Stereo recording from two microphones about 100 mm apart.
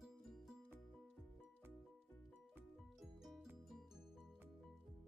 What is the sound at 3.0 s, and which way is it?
Music, centre (ahead or behind).